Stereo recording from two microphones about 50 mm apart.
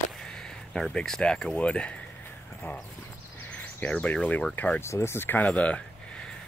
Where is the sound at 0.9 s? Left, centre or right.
Centre.